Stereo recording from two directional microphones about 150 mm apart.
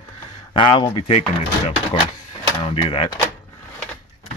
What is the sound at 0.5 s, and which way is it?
Speech, 30° left (ahead or behind).